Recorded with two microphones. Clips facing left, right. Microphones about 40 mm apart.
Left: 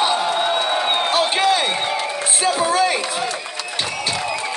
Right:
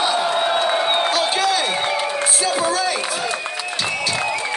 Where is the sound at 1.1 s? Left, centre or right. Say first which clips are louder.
Left 2 dB; left.